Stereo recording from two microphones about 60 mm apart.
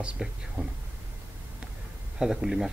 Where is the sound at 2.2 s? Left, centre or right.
Centre.